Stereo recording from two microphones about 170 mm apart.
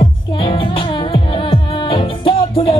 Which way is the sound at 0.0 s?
30° left (ahead or behind).